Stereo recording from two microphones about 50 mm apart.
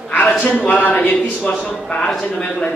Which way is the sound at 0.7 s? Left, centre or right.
Left.